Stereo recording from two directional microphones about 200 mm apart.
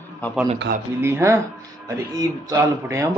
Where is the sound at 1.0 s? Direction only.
10° right (ahead or behind).